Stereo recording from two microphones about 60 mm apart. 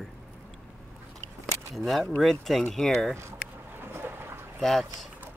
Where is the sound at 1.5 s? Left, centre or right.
Right.